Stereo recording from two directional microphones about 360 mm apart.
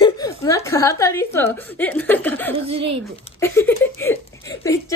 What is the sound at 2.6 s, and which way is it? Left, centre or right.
Speech, centre.